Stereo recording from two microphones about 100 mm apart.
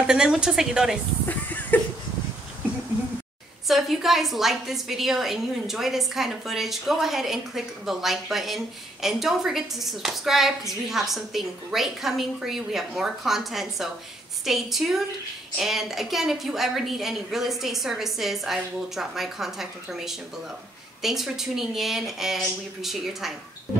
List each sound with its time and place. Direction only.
0.0 s a woman's voice: 5° right (ahead or behind)
1.2 s a sound: 15° left (ahead or behind)
3.6 s a woman's voice: centre (ahead or behind)